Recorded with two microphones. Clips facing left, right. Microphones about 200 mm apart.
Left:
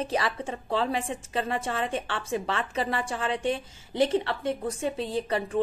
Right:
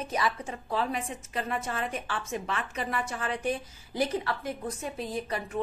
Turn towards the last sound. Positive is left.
turn(degrees=30)  # may be behind; listen again after turning